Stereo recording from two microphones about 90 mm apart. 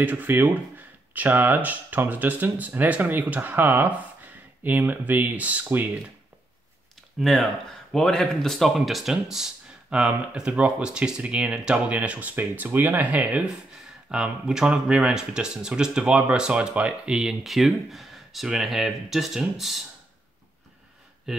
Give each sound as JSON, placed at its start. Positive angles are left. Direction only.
{"t": 0.0, "sound": "speech", "side_deg": -20}
{"t": 7.2, "sound": "speech", "side_deg": 0}
{"t": 21.3, "sound": "speech", "side_deg": -5}